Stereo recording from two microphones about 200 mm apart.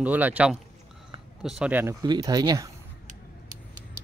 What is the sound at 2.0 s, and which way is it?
Speech, 20° right (ahead or behind).